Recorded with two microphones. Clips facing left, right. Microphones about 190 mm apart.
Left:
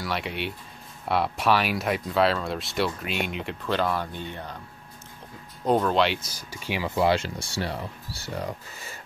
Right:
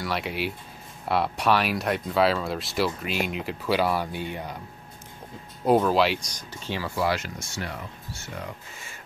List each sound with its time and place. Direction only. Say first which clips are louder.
0.0 s speech: right 1 dB; centre (ahead or behind)
5.7 s speech: right 2 dB; 5° right (ahead or behind); by 8.9 s 35° left (ahead or behind)